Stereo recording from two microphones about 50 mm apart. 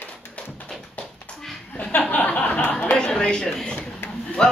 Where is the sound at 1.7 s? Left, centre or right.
Left.